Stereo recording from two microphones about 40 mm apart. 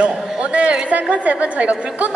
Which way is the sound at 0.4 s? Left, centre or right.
Right.